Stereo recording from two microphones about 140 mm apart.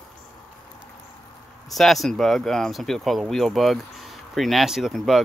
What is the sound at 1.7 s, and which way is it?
Speech, centre (ahead or behind).